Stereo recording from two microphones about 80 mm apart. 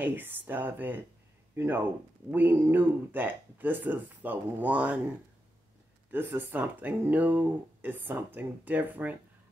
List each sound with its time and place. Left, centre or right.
0.0 s speech: right
6.1 s speech: right